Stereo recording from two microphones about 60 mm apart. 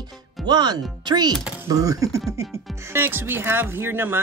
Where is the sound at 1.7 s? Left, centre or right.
Right.